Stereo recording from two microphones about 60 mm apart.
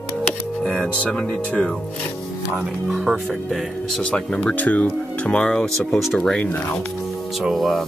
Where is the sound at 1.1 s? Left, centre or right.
Centre.